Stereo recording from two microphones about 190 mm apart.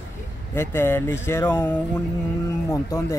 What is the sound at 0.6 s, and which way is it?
Speech, 10° left (ahead or behind).